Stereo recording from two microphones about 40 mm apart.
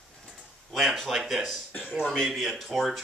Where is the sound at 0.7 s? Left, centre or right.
Centre.